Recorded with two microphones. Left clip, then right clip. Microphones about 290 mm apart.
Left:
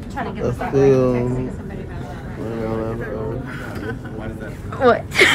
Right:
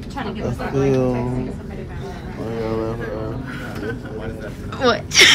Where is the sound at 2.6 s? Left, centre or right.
Centre.